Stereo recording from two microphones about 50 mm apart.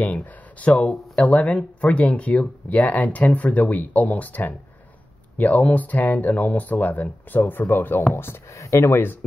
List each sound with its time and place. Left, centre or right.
0.0 s speech: left
8.5 s speech: left